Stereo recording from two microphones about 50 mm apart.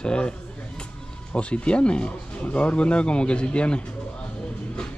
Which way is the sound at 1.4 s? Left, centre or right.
Left.